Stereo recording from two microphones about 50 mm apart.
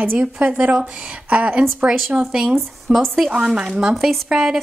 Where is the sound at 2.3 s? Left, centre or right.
Centre.